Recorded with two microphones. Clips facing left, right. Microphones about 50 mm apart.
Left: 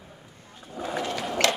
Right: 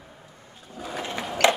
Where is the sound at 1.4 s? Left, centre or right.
Centre.